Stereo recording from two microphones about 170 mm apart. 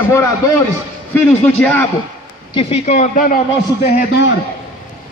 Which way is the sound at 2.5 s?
40° left (ahead or behind).